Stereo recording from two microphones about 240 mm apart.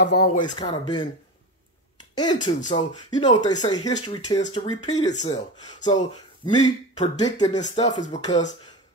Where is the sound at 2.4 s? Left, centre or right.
Centre.